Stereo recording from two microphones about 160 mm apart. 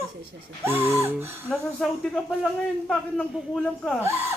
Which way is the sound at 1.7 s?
5° left (ahead or behind).